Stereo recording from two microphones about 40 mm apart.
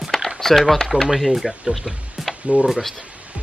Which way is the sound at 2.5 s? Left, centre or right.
Right.